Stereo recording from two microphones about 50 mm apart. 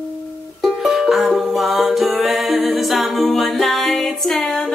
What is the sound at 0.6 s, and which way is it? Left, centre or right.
Music, centre.